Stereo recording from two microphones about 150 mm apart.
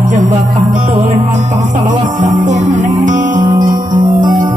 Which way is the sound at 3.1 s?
60° right (ahead or behind).